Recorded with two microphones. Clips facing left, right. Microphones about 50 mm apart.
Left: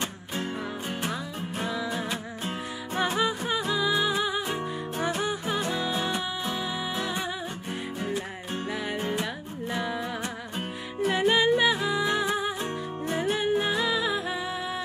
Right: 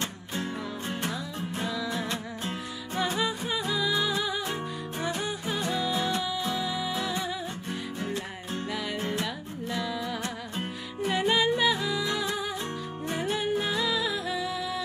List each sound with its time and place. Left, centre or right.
1.6 s music: left
9.0 s music: left
11.1 s music: centre
13.2 s music: centre